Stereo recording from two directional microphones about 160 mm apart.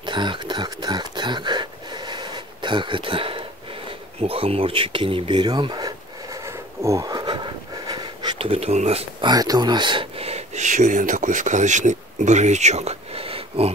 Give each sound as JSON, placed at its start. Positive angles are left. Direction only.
{"t": 0.0, "sound": "a sound", "side_deg": -30}
{"t": 4.2, "sound": "speech", "side_deg": -35}
{"t": 9.2, "sound": "speech", "side_deg": -25}